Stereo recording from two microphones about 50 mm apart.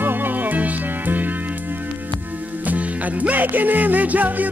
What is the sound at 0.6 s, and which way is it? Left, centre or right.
Music, right.